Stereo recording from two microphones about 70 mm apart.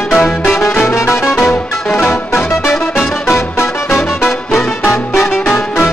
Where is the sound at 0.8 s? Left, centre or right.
Left.